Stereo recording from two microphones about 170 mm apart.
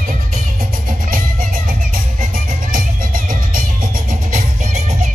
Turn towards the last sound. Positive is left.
turn(degrees=-55)  # may be behind; listen again after turning